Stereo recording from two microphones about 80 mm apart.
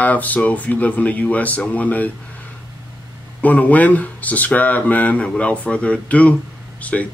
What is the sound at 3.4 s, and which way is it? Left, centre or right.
Speech, centre.